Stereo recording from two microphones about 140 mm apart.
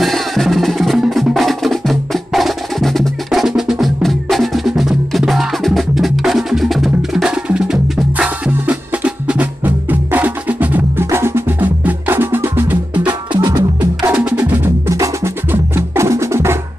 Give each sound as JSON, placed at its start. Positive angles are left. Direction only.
{"t": 0.0, "sound": "music", "side_deg": 0}
{"t": 12.9, "sound": "music", "side_deg": -35}
{"t": 13.7, "sound": "music", "side_deg": -10}